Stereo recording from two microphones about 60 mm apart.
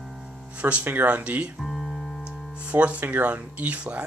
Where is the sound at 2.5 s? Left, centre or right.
Right.